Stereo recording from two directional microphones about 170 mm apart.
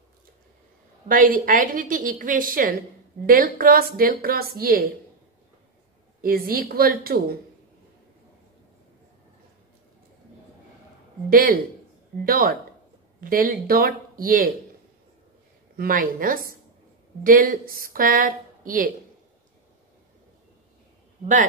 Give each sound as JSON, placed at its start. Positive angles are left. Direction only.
{"t": 1.0, "sound": "a woman's voice", "side_deg": -55}
{"t": 6.2, "sound": "a woman's voice", "side_deg": -60}
{"t": 11.2, "sound": "a woman's voice", "side_deg": -55}
{"t": 15.7, "sound": "a woman's voice", "side_deg": -55}